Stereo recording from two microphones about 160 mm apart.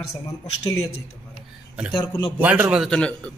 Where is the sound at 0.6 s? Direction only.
20° left (ahead or behind).